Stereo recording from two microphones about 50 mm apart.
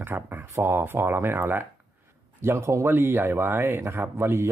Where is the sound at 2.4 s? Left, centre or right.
Right.